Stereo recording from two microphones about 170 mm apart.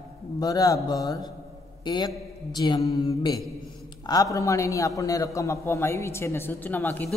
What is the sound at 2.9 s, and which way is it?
Mantra, 35° left (ahead or behind).